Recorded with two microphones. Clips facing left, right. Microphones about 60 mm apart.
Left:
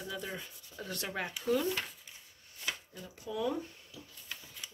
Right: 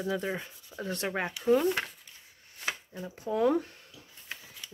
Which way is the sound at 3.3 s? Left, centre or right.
Right.